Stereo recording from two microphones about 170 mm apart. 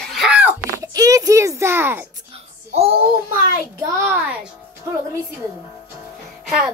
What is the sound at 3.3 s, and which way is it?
A child's voice, 15° right (ahead or behind).